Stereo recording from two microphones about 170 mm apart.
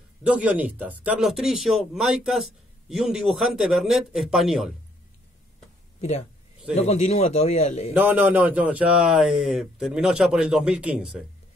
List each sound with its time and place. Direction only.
0.3 s speech: 10° right (ahead or behind)
5.9 s a man's voice: 45° left (ahead or behind)
7.9 s speech: 10° right (ahead or behind)